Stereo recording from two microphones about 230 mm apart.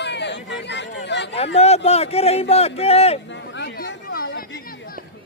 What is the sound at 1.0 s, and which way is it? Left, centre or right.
Chatter, left.